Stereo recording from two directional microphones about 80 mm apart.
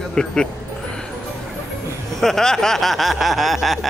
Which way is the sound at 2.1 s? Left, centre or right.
Centre.